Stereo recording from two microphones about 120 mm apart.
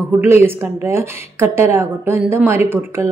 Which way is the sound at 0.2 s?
20° right (ahead or behind).